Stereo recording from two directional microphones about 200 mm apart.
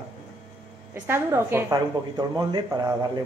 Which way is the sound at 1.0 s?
10° right (ahead or behind).